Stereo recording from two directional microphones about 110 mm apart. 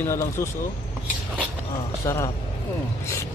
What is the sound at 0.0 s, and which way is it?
Speech, 20° left (ahead or behind).